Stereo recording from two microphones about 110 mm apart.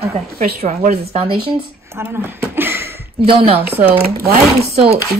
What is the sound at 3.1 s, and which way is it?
Speech, 55° right (ahead or behind).